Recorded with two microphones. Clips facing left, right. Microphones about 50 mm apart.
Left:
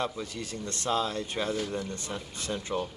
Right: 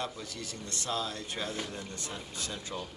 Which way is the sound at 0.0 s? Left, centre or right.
Left.